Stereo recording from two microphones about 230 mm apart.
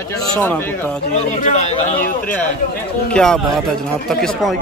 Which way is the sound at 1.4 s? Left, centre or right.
Left.